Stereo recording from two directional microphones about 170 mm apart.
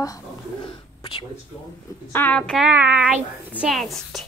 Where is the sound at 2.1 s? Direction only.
10° left (ahead or behind).